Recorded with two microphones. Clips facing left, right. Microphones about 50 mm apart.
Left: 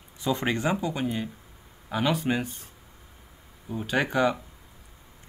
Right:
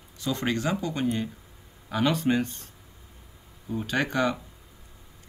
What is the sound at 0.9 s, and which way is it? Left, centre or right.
Speech, centre.